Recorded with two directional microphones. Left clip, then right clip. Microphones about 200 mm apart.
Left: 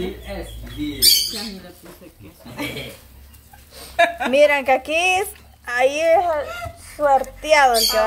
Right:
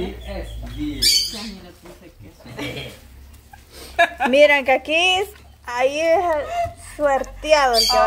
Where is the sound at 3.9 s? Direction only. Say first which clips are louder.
Even; 45° right (ahead or behind).